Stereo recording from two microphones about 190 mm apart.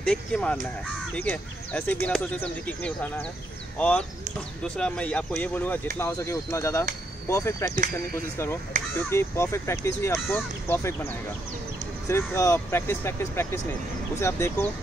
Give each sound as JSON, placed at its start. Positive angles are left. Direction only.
{"t": 0.0, "sound": "speech", "side_deg": 5}
{"t": 8.7, "sound": "speech", "side_deg": -40}
{"t": 9.1, "sound": "speech", "side_deg": 15}
{"t": 12.1, "sound": "speech", "side_deg": 10}